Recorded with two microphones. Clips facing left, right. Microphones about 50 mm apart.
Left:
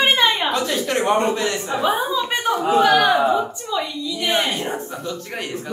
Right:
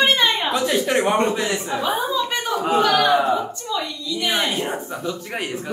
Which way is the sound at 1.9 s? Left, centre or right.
Centre.